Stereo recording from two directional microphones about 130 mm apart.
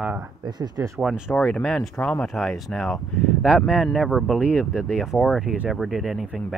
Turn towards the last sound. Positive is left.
turn(degrees=-5)  # may be behind; listen again after turning